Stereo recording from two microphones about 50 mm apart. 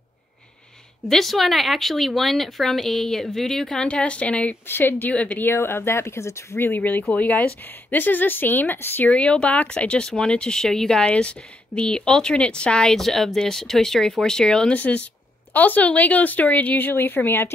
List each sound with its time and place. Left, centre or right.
1.0 s speech: centre; by 4.6 s left
4.6 s speech: left
5.1 s speech: left
5.4 s speech: left
6.6 s speech: left
9.1 s speech: left
12.9 s speech: centre
14.7 s speech: left